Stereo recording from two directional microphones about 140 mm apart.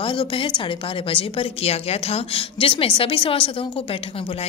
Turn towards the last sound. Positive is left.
turn(degrees=40)  # may be behind; listen again after turning